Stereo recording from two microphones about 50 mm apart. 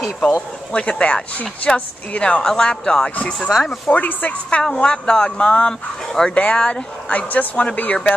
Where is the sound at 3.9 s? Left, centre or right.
Left.